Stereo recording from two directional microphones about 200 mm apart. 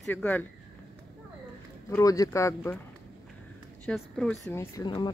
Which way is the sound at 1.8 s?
15° left (ahead or behind).